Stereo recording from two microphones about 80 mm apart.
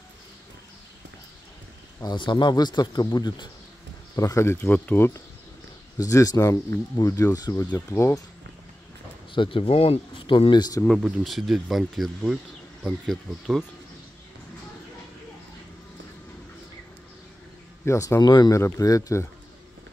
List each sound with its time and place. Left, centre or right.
2.1 s speech: left
4.2 s speech: left
4.6 s speech: centre
5.9 s speech: left
7.3 s speech: left
7.7 s speech: left
9.3 s speech: left
11.0 s speech: centre
17.8 s speech: left
18.2 s speech: left
18.5 s speech: left